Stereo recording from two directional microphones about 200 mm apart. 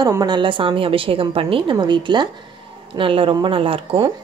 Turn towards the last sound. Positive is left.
turn(degrees=-25)  # may be behind; listen again after turning